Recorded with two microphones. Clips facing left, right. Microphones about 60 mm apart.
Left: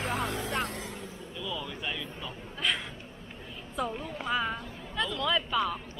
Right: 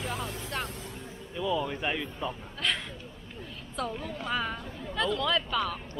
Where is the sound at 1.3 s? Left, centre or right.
Right.